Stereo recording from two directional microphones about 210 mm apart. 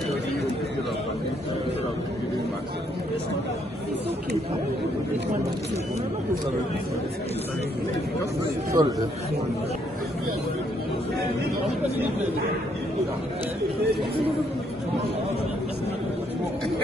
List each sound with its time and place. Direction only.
8.8 s speech: 20° right (ahead or behind)